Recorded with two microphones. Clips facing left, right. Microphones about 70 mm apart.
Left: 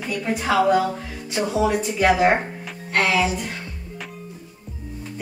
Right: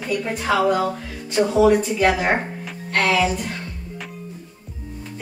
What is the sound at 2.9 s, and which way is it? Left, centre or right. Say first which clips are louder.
Music: right 1 dB; centre.